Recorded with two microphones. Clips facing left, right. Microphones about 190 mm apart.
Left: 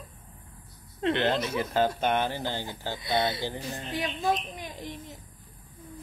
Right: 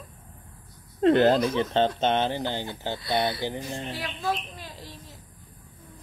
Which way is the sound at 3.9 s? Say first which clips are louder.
Left 4 dB; 20° left (ahead or behind).